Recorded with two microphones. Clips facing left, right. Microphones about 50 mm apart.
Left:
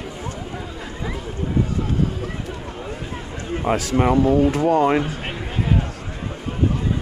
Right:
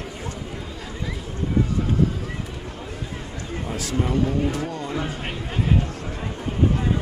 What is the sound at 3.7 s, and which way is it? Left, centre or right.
Speech, left.